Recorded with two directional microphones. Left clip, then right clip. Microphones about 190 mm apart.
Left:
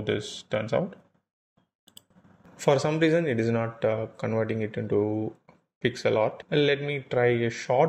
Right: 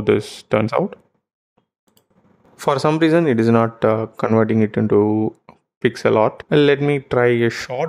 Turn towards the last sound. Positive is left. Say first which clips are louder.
# right 3 dB
turn(degrees=-25)  # may be behind; listen again after turning